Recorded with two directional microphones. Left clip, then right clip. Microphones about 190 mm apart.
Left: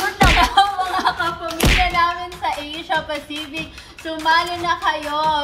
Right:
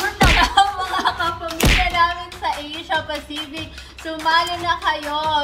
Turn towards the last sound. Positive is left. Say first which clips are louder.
# left 2 dB
turn(degrees=5)  # may be behind; listen again after turning